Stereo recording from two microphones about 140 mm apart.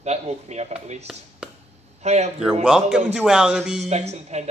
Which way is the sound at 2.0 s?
50° right (ahead or behind).